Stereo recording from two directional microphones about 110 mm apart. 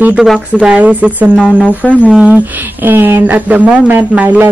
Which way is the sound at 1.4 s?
10° left (ahead or behind).